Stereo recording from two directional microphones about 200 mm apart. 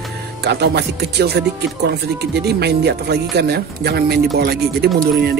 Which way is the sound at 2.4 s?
55° right (ahead or behind).